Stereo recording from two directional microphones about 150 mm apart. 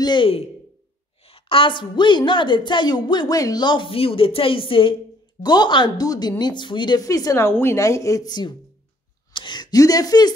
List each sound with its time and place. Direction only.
0.0 s a woman's voice: 30° left (ahead or behind)